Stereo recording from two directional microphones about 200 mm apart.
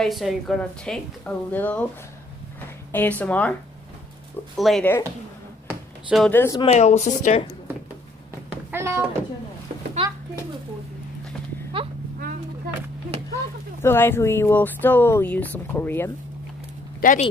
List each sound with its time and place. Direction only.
0.0 s speech: centre (ahead or behind)
2.9 s speech: 10° left (ahead or behind)
4.6 s speech: centre (ahead or behind)
5.7 s a sound: 5° right (ahead or behind)
6.3 s speech: 15° left (ahead or behind)
6.6 s speech: 35° left (ahead or behind)
8.5 s a sound: 10° right (ahead or behind)
10.0 s a child's voice: 25° right (ahead or behind)
13.8 s speech: 10° left (ahead or behind)
17.0 s speech: 40° left (ahead or behind)